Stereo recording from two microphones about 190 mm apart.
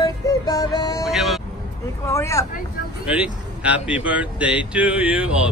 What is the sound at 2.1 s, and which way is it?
Speech, 15° left (ahead or behind).